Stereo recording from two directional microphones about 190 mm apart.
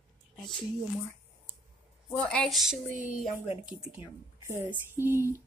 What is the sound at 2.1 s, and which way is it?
A woman's voice, 5° left (ahead or behind).